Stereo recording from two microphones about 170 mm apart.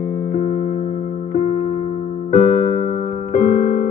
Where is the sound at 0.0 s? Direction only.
45° left (ahead or behind).